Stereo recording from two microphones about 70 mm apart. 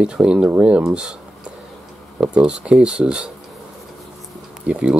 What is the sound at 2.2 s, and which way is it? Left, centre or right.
Speech, centre.